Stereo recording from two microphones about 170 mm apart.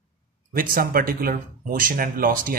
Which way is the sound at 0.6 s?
60° right (ahead or behind).